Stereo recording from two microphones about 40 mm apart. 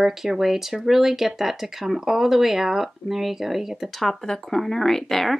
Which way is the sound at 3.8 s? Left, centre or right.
Centre.